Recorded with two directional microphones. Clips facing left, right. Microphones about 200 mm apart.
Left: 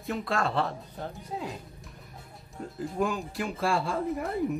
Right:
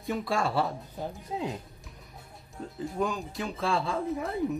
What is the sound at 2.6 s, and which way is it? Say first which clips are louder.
Speech: left 1 dB; centre (ahead or behind).